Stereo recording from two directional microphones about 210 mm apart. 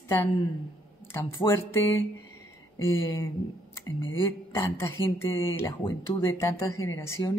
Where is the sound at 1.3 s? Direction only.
15° left (ahead or behind).